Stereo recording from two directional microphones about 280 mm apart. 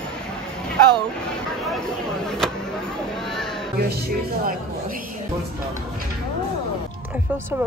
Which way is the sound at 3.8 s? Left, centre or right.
Right.